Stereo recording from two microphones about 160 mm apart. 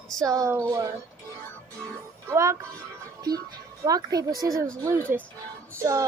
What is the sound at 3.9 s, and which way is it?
Speech, 25° right (ahead or behind).